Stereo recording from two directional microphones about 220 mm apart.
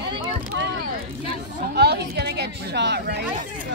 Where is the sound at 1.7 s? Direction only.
50° right (ahead or behind).